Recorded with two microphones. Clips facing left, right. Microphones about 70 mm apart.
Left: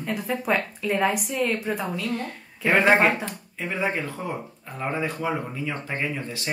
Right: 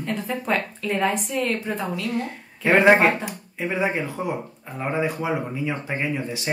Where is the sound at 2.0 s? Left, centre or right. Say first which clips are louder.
Right 2 dB; centre.